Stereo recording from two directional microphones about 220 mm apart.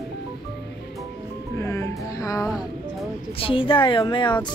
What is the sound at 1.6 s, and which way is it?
Music, 15° left (ahead or behind).